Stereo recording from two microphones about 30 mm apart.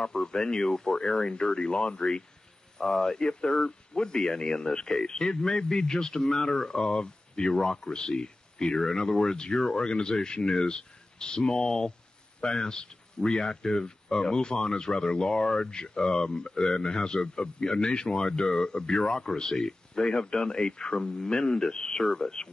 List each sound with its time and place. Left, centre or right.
0.0 s speech: left
2.8 s speech: centre